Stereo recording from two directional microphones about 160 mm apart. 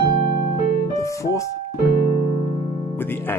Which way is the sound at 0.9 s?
20° left (ahead or behind).